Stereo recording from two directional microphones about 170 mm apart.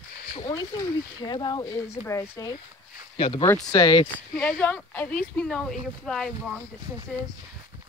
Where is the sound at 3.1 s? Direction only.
30° left (ahead or behind).